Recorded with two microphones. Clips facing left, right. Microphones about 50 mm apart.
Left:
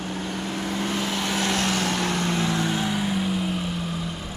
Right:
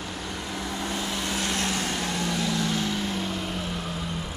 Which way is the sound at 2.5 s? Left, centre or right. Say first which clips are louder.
Left 2 dB; left.